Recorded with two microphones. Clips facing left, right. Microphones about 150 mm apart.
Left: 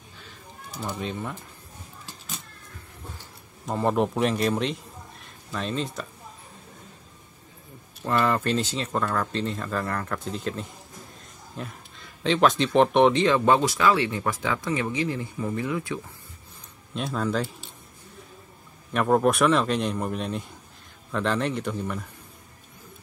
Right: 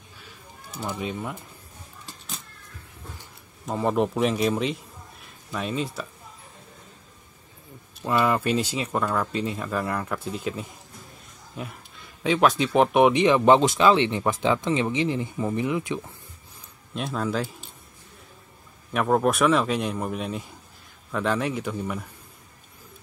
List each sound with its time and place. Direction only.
0.7 s speech: centre (ahead or behind)
2.0 s a sound: centre (ahead or behind)
3.6 s a man's voice: centre (ahead or behind)
8.0 s speech: 10° right (ahead or behind)
16.9 s speech: centre (ahead or behind)
18.9 s speech: centre (ahead or behind)